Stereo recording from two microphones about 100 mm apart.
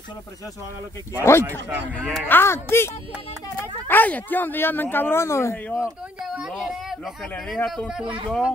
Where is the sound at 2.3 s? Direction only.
25° left (ahead or behind).